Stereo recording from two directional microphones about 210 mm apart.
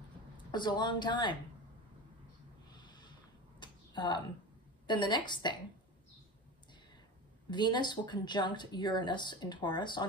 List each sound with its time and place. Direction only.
0.5 s speech: 20° left (ahead or behind)
3.5 s a sound: 20° left (ahead or behind)
4.8 s speech: 20° left (ahead or behind)
7.5 s speech: 20° left (ahead or behind)